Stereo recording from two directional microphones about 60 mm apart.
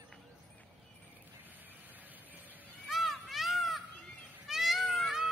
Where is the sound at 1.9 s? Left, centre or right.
Right.